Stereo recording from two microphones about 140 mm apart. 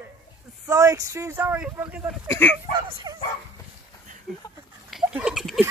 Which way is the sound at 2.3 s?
15° left (ahead or behind).